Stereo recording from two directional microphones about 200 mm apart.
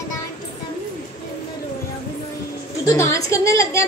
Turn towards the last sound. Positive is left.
turn(degrees=15)  # may be behind; listen again after turning